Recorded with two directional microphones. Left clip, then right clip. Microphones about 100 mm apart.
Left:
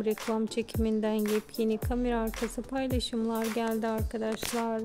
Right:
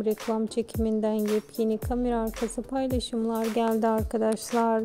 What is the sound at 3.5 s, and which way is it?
Speech, 55° right (ahead or behind).